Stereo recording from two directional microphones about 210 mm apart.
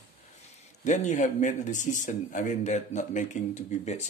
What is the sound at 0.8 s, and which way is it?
Speech, 35° left (ahead or behind).